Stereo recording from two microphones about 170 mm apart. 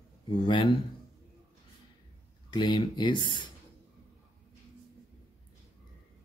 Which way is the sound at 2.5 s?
25° left (ahead or behind).